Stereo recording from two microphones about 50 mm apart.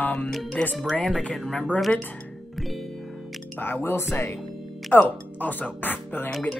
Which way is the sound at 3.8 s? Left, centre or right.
Left.